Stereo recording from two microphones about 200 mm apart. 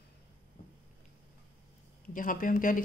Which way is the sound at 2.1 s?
40° left (ahead or behind).